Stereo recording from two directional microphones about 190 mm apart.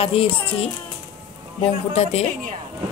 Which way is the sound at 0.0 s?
30° left (ahead or behind).